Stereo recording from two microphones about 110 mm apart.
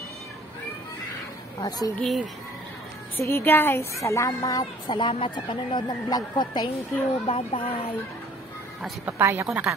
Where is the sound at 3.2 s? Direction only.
20° left (ahead or behind).